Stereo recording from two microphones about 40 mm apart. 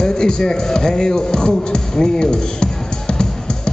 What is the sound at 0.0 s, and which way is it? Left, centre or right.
Music, centre.